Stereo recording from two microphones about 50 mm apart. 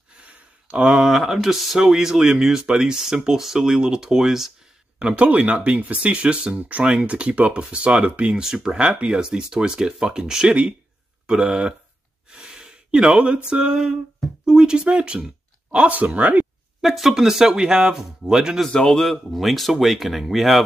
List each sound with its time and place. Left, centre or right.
0.2 s a sound: right
0.9 s speech: centre
4.9 s a sound: centre
5.2 s speech: right
8.4 s speech: centre
12.3 s a sound: centre
13.5 s speech: centre; by 16.4 s right
16.8 s speech: centre
18.7 s speech: centre